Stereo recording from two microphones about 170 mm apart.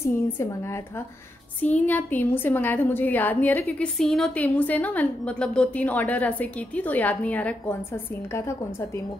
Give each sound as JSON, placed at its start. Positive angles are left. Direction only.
{"t": 0.0, "sound": "a woman's voice", "side_deg": 15}
{"t": 1.6, "sound": "a woman's voice", "side_deg": 10}